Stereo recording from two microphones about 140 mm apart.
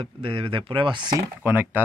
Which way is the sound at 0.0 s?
40° right (ahead or behind).